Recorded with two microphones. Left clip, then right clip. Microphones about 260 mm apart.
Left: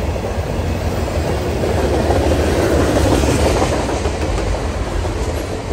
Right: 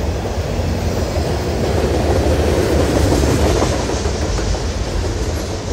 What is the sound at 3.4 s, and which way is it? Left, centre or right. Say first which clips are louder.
Train: left 1 dB; left.